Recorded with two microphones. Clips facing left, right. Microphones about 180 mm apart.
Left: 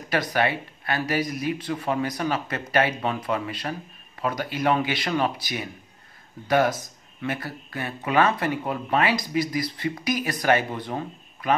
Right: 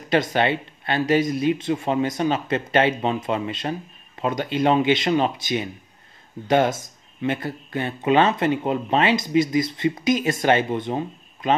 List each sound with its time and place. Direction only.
0.1 s speech: 25° right (ahead or behind)